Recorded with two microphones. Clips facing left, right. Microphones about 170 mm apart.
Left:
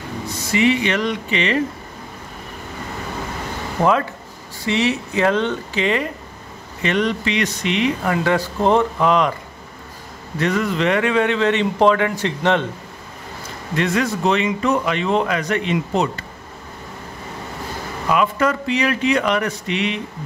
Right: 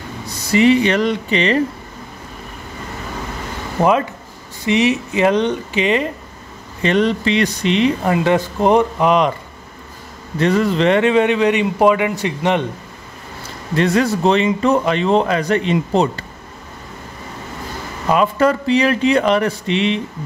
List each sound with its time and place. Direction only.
0.5 s speech: 35° right (ahead or behind)
3.8 s a man's voice: 10° right (ahead or behind)
6.8 s speech: 30° right (ahead or behind)
10.4 s a man's voice: 30° right (ahead or behind); by 12.6 s 15° right (ahead or behind)
13.7 s speech: 35° right (ahead or behind)
18.0 s speech: 35° right (ahead or behind)